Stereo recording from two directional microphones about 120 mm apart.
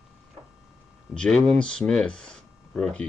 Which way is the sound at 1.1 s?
5° left (ahead or behind).